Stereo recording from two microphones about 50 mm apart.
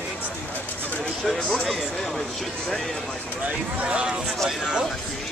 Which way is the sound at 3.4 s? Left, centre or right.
Right.